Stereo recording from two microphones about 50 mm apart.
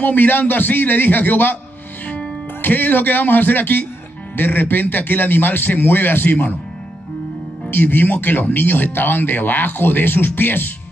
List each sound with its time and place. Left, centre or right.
0.0 s speech: left
7.7 s speech: left